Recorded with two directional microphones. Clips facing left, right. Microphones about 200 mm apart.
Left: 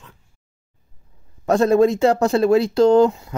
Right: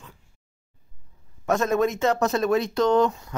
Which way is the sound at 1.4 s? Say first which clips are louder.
Left 7 dB; 30° left (ahead or behind).